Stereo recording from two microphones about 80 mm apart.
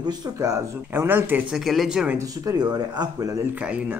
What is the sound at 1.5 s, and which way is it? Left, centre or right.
Speech, centre.